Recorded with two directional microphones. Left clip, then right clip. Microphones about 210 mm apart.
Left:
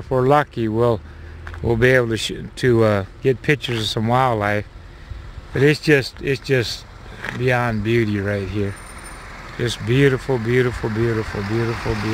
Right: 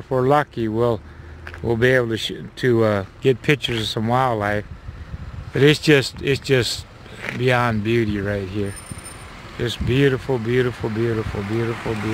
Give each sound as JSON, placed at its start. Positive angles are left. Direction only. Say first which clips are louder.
{"t": 0.1, "sound": "speech", "louder": "left 1 dB", "side_deg": 5}
{"t": 3.2, "sound": "speech", "louder": "even", "side_deg": -5}
{"t": 5.5, "sound": "speech", "louder": "right 1 dB", "side_deg": -5}
{"t": 11.0, "sound": "speech", "louder": "left 1 dB", "side_deg": -20}